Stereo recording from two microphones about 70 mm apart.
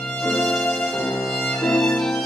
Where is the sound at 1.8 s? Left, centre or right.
Centre.